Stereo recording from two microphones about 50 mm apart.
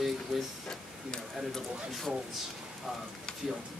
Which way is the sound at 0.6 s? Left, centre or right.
Centre.